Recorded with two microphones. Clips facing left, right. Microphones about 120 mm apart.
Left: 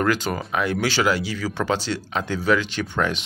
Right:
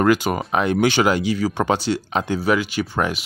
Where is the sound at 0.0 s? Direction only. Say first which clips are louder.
Right 5 dB; 15° right (ahead or behind).